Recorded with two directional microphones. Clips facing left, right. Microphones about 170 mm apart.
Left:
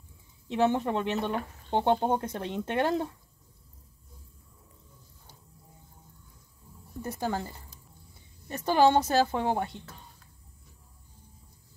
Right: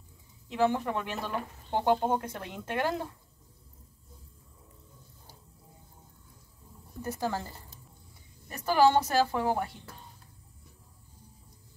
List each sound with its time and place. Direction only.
0.5 s speech: 25° left (ahead or behind)
7.0 s speech: 20° left (ahead or behind)
8.5 s speech: 25° left (ahead or behind)